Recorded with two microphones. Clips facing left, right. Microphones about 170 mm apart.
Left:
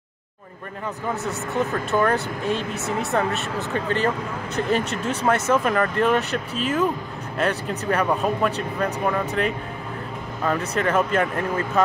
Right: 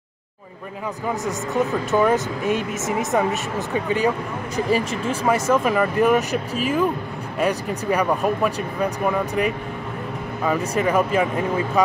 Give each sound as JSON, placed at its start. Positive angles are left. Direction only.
{"t": 1.5, "sound": "speech", "side_deg": -15}
{"t": 7.9, "sound": "speech", "side_deg": -15}
{"t": 10.7, "sound": "speech", "side_deg": -10}